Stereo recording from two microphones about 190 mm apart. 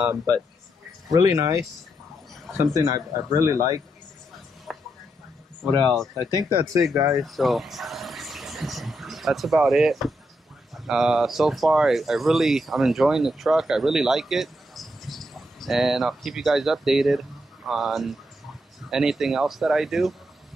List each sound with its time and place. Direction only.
1.1 s speech: 20° right (ahead or behind)
4.7 s a sound: centre (ahead or behind)
5.7 s speech: 5° left (ahead or behind)
6.3 s speech: 20° right (ahead or behind)
7.2 s a sound: centre (ahead or behind)
10.7 s speech: 5° right (ahead or behind)